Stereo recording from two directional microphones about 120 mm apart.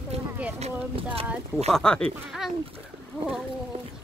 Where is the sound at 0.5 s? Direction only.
60° right (ahead or behind).